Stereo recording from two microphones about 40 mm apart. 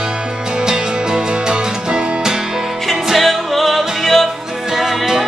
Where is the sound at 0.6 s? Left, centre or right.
Centre.